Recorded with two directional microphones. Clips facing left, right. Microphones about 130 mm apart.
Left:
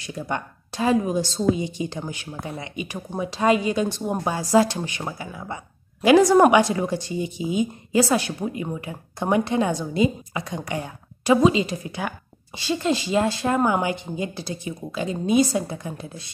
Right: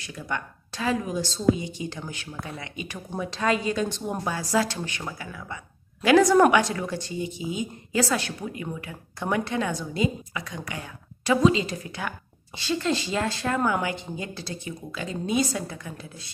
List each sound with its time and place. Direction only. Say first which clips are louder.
0.2 s speech: left 3 dB; 25° left (ahead or behind)
6.3 s speech: left 3 dB; 15° left (ahead or behind)